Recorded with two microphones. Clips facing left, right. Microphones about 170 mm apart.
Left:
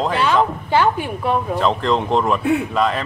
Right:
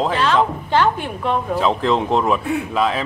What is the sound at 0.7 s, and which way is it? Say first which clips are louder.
Speech: left 1 dB; 10° left (ahead or behind).